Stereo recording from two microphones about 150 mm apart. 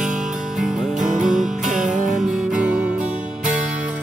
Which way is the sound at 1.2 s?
5° right (ahead or behind).